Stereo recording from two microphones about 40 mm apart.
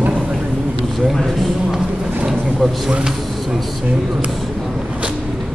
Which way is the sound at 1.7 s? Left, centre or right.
Centre.